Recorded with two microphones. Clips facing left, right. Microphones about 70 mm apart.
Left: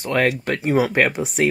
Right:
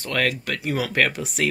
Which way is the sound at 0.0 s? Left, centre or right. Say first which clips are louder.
Left 5 dB; left.